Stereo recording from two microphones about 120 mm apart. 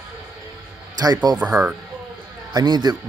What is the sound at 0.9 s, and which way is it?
Speech, 35° right (ahead or behind).